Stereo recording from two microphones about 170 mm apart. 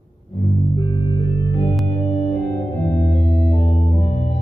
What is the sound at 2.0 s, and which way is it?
Music, 45° left (ahead or behind).